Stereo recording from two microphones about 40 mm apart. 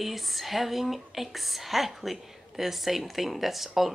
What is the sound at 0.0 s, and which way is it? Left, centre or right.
Speech, centre.